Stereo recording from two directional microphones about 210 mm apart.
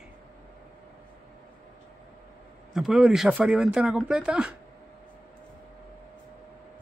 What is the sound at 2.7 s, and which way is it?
Speech, centre (ahead or behind).